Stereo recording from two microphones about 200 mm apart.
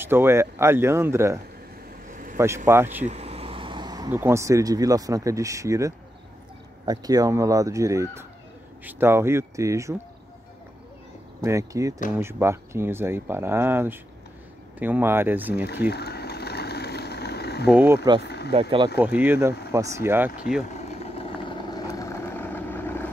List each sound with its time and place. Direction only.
0.0 s speech: 10° right (ahead or behind)
3.1 s speech: 30° right (ahead or behind); by 9.9 s 15° right (ahead or behind)
11.4 s speech: 15° right (ahead or behind)
15.6 s a sound: 55° left (ahead or behind)
17.6 s speech: 10° right (ahead or behind)
18.2 s speech: 55° left (ahead or behind)
18.5 s speech: 30° right (ahead or behind)
18.9 s speech: 10° right (ahead or behind)
20.7 s vehicle: 30° left (ahead or behind); by 23.0 s 10° left (ahead or behind)